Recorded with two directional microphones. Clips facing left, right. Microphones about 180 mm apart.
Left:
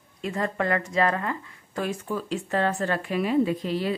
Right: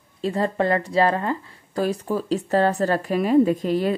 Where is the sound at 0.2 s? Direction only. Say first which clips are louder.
Right 5 dB; 30° right (ahead or behind).